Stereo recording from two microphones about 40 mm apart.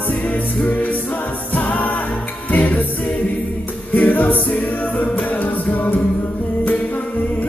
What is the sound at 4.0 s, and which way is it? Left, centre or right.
Music, left.